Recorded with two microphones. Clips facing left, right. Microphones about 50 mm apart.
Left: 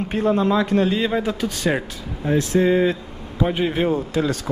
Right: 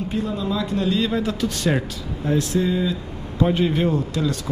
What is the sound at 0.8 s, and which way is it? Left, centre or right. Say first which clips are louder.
Speech: left 1 dB; left.